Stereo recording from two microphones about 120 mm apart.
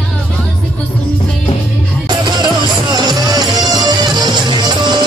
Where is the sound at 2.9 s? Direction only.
35° right (ahead or behind).